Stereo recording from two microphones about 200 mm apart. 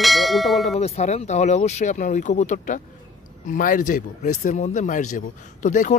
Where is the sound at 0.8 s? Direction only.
30° left (ahead or behind).